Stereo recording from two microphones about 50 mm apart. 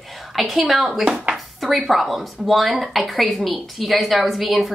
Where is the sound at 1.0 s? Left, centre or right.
Centre.